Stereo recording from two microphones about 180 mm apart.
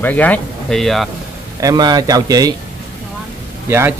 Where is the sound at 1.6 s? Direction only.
20° right (ahead or behind).